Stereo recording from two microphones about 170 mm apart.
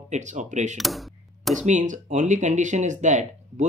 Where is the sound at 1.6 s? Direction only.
45° right (ahead or behind).